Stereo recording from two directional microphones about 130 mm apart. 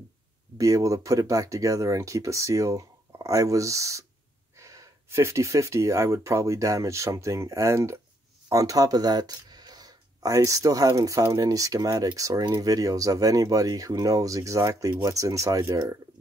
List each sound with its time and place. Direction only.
0.6 s speech: 25° right (ahead or behind)